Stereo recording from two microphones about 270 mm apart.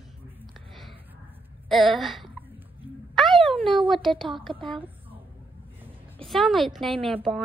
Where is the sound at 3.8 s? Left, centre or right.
Centre.